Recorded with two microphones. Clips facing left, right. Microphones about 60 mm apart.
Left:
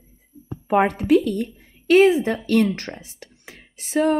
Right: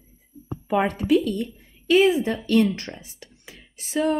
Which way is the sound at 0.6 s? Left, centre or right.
Left.